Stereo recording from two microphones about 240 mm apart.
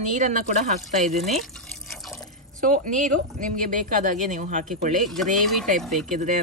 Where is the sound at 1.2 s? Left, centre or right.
Centre.